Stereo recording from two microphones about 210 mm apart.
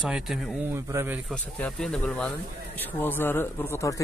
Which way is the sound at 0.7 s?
15° right (ahead or behind).